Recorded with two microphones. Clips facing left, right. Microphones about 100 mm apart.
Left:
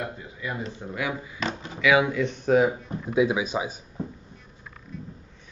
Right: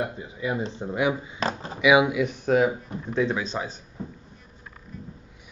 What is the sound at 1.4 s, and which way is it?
Speech, 40° right (ahead or behind).